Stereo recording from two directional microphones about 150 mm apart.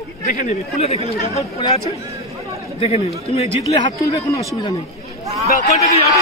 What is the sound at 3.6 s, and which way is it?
Speech, 25° left (ahead or behind).